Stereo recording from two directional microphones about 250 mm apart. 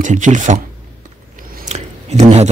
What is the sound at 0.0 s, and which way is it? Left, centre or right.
Speech, right.